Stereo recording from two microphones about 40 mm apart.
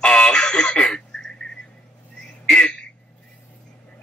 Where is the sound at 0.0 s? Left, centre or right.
Left.